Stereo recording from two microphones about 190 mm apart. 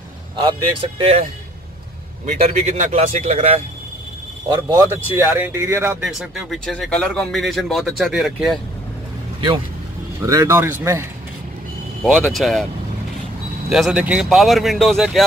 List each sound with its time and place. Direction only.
0.4 s speech: 25° right (ahead or behind)
2.6 s speech: 40° right (ahead or behind)
4.5 s speech: 15° right (ahead or behind)
6.0 s speech: centre (ahead or behind)
10.2 s speech: 15° right (ahead or behind)
12.0 s speech: centre (ahead or behind)
13.7 s speech: centre (ahead or behind)